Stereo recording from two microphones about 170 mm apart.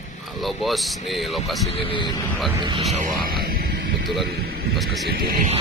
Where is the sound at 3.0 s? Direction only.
55° right (ahead or behind).